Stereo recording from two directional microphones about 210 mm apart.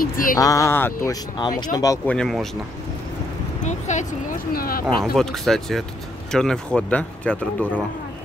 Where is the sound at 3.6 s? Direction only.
35° left (ahead or behind).